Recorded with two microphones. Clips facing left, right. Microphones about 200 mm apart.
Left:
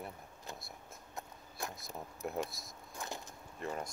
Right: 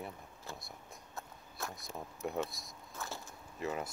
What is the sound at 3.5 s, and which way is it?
Speech, 5° right (ahead or behind).